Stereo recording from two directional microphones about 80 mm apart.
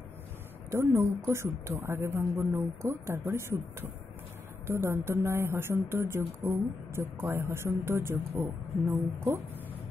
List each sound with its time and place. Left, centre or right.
0.7 s speech: right
4.6 s speech: right